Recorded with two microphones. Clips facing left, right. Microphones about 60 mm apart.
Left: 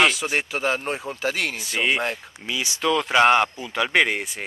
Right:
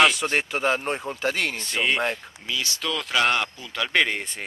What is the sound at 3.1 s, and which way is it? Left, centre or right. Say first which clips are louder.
Speech: left 5 dB; left.